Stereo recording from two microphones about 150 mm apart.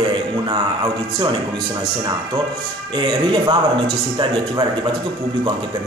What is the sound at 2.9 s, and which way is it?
Speech, 30° right (ahead or behind).